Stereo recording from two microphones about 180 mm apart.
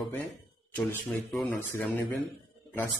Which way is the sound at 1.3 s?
Centre (ahead or behind).